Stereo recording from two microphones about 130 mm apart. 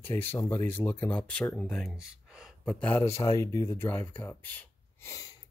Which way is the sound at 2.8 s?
20° left (ahead or behind).